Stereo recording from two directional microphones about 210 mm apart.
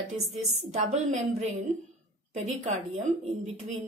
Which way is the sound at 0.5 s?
30° right (ahead or behind).